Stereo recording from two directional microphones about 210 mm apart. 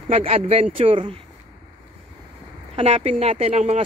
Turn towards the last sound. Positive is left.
turn(degrees=-30)  # may be behind; listen again after turning